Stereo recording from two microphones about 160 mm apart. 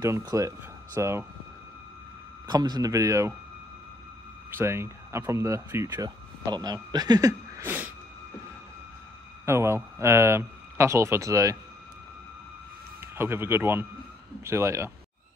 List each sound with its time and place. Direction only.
0.0 s speech: 20° right (ahead or behind)
2.4 s speech: 25° right (ahead or behind)
4.5 s speech: 15° right (ahead or behind)
9.5 s speech: 15° right (ahead or behind)
13.0 s speech: 15° right (ahead or behind)